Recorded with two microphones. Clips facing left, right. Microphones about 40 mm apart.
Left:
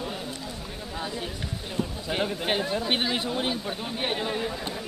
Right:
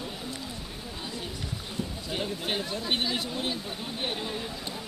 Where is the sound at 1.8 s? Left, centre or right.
Left.